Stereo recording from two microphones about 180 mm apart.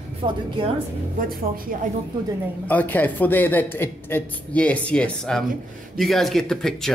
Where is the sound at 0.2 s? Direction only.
25° right (ahead or behind).